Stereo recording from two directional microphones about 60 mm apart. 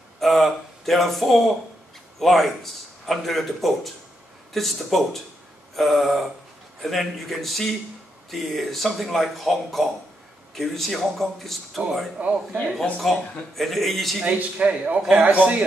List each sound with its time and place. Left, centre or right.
0.2 s speech: centre
12.2 s speech: centre
13.0 s speech: centre
14.2 s speech: right